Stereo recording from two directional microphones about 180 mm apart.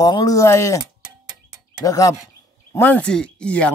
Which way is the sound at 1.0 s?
5° right (ahead or behind).